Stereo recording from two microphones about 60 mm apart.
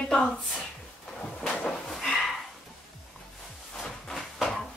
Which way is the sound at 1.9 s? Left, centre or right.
Centre.